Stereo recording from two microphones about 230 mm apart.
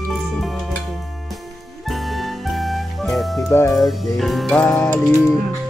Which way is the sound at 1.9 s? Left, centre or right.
Centre.